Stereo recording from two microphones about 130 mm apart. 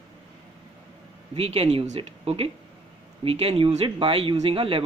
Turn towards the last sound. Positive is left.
turn(degrees=-45)  # may be behind; listen again after turning